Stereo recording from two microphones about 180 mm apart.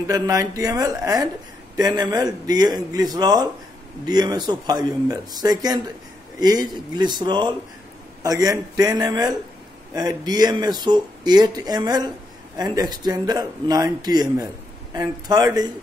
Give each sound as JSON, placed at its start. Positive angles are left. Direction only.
{"t": 0.0, "sound": "speech", "side_deg": -20}